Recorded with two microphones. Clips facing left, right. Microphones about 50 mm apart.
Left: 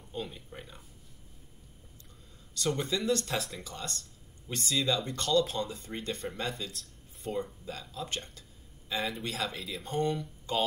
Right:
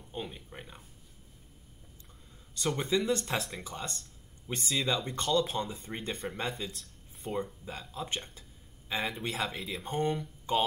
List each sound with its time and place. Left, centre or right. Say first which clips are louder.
0.1 s speech: left 1 dB; centre
2.5 s speech: right 1 dB; right
7.2 s speech: even; centre
7.9 s a sound: right 2 dB; right
8.9 s speech: even; centre
9.4 s speech: right 1 dB; right